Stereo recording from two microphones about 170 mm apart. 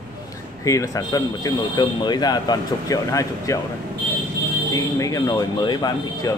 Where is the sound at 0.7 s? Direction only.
20° left (ahead or behind).